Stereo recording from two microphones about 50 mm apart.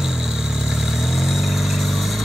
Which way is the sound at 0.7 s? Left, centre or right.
Centre.